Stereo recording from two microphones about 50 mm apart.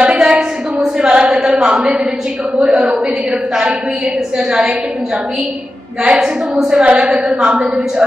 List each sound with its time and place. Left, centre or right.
0.0 s a sound: centre
1.0 s chant: centre
4.5 s a woman's voice: centre
6.0 s a woman's voice: centre
7.1 s a woman's voice: centre